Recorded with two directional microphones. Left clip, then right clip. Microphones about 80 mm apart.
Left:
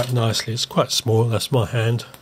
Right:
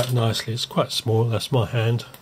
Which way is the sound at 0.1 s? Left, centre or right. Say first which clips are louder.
Left 2 dB; left.